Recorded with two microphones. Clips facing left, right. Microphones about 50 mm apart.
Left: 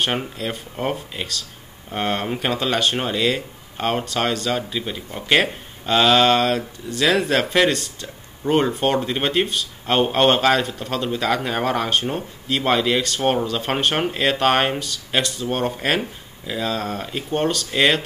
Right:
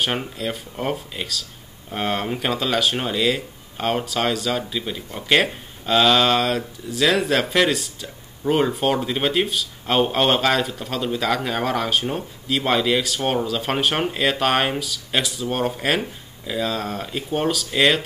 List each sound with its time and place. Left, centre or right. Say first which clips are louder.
0.0 s speech: left 1 dB; centre